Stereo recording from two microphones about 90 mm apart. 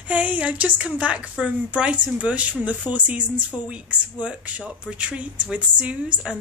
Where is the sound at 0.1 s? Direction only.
15° right (ahead or behind).